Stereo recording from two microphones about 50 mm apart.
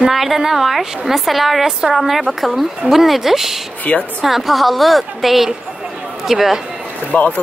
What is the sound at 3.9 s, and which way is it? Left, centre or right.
Speech, left.